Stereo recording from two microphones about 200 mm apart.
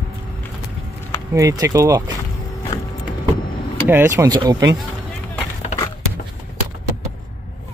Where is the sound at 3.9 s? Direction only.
10° right (ahead or behind).